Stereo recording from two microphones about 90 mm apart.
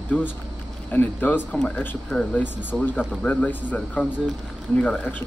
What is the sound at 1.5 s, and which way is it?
Speech, 10° left (ahead or behind).